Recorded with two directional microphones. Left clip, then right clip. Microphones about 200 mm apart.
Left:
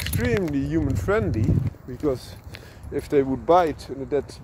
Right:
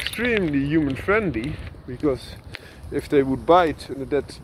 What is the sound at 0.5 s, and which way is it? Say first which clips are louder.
Speech: right 3 dB; 20° left (ahead or behind).